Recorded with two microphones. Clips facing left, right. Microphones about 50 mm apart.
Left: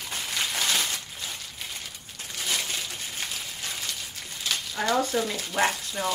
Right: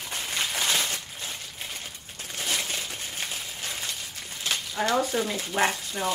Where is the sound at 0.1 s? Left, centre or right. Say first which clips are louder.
Even; centre.